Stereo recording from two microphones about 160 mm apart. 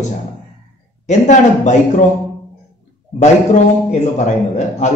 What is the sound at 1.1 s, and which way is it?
Speech, 45° left (ahead or behind).